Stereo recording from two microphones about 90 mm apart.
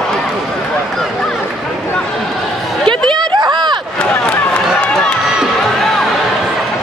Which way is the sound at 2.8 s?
60° right (ahead or behind).